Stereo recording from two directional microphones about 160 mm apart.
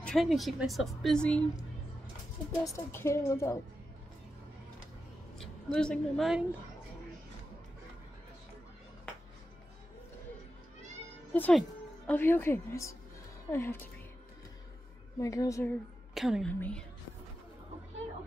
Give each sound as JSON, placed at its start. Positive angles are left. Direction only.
{"t": 0.0, "sound": "a woman's voice", "side_deg": 0}
{"t": 2.7, "sound": "a woman's voice", "side_deg": 15}
{"t": 5.4, "sound": "a woman's voice", "side_deg": 5}
{"t": 11.3, "sound": "a woman's voice", "side_deg": 10}
{"t": 15.1, "sound": "a woman's voice", "side_deg": 20}
{"t": 16.2, "sound": "a woman's voice", "side_deg": 0}
{"t": 16.5, "sound": "a woman's voice", "side_deg": 10}